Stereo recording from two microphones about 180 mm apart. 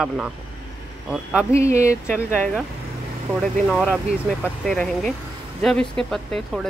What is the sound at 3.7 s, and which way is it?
A woman's voice, 5° right (ahead or behind).